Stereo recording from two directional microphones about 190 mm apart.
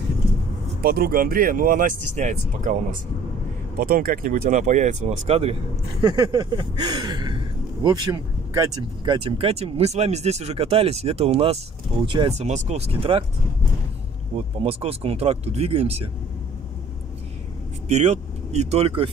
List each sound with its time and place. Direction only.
0.8 s speech: 55° right (ahead or behind); by 5.6 s 30° right (ahead or behind)
5.9 s speech: 20° right (ahead or behind)
14.3 s speech: 30° right (ahead or behind)
17.8 s speech: 35° right (ahead or behind)